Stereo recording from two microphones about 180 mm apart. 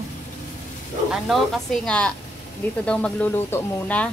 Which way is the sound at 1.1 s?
Centre (ahead or behind).